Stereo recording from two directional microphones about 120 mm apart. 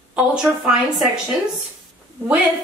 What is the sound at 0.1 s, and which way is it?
A woman's voice, 10° right (ahead or behind).